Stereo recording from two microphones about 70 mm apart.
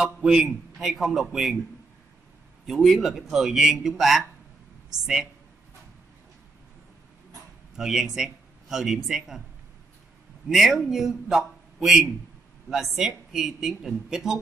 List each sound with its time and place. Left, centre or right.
0.0 s a man's voice: centre
2.6 s a man's voice: centre
7.7 s a man's voice: centre
10.5 s a man's voice: centre